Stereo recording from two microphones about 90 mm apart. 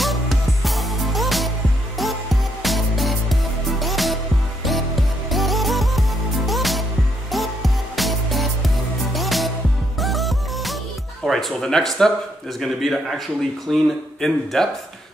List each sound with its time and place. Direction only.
0.0 s music: centre (ahead or behind)
2.6 s music: centre (ahead or behind)
5.3 s music: centre (ahead or behind)
11.2 s speech: 5° left (ahead or behind)